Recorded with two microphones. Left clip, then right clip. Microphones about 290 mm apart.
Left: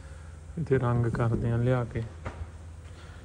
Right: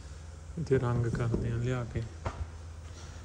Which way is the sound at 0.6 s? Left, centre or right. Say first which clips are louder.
Left 3 dB; centre.